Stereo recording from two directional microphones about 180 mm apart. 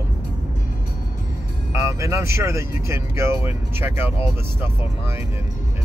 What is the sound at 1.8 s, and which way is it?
Speech, 15° right (ahead or behind).